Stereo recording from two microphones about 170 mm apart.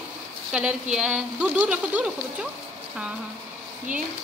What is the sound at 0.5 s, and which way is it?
A woman's voice, 5° right (ahead or behind).